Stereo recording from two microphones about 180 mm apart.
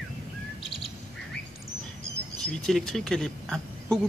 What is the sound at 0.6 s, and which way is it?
Bird, 30° left (ahead or behind).